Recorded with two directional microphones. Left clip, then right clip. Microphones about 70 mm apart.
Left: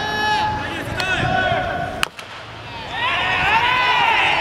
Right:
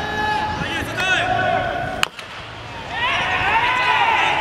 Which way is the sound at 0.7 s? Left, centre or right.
Right.